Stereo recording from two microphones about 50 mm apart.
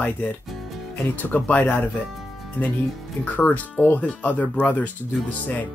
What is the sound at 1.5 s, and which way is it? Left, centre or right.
Speech, left.